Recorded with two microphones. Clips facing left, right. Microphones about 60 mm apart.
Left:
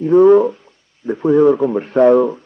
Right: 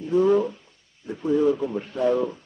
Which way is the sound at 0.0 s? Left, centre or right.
Left.